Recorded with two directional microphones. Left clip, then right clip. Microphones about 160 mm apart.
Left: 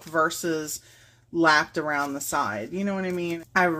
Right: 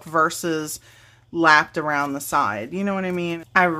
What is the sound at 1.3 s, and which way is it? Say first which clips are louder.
Speech: right 4 dB; 15° right (ahead or behind).